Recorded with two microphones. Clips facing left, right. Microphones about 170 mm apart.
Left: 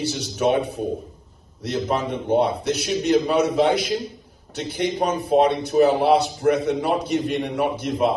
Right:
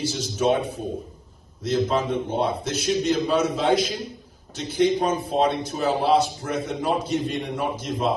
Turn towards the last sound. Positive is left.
turn(degrees=65)  # may be behind; listen again after turning